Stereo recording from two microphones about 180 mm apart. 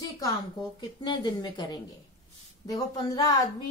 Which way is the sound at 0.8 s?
25° left (ahead or behind).